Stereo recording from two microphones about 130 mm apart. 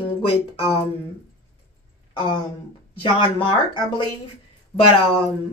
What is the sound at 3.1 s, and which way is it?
Speech, 40° left (ahead or behind).